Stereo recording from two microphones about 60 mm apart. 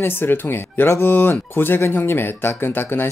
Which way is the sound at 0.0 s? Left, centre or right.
Left.